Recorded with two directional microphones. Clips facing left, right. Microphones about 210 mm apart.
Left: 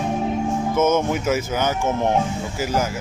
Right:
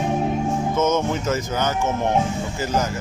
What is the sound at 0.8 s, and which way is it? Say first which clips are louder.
Speech: left 3 dB; 10° left (ahead or behind).